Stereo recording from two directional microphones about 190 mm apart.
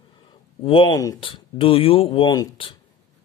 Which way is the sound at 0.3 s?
30° left (ahead or behind).